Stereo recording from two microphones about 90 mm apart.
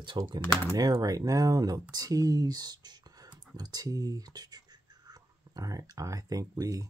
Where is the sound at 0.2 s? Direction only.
50° right (ahead or behind).